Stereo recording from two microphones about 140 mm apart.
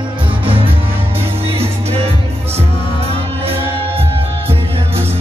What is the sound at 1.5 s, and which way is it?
Music, 45° right (ahead or behind).